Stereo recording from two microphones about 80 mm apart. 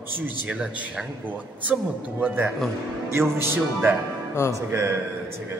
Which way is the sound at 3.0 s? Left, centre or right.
Right.